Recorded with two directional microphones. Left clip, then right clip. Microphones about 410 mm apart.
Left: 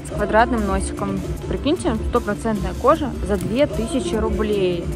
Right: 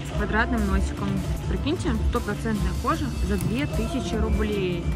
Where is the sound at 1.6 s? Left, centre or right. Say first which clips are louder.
Left 7 dB; centre.